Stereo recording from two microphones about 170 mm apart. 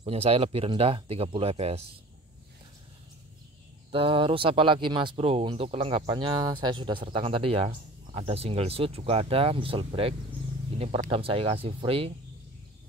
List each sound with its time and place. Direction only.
0.0 s speech: 35° right (ahead or behind)
3.9 s speech: 30° right (ahead or behind)